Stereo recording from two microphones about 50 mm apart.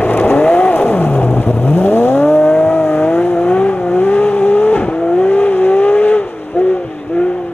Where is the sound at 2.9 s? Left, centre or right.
Left.